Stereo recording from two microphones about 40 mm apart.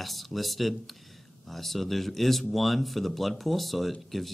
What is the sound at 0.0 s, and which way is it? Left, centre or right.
Speech, centre.